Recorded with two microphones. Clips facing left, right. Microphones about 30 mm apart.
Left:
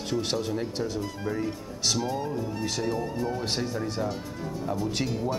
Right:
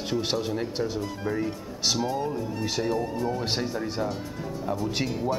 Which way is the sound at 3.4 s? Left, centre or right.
Centre.